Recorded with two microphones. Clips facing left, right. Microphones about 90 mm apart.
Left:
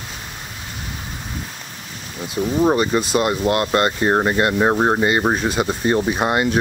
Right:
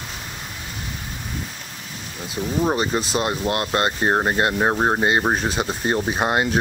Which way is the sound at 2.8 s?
20° right (ahead or behind).